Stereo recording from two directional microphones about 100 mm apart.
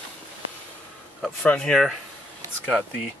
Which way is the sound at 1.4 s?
10° left (ahead or behind).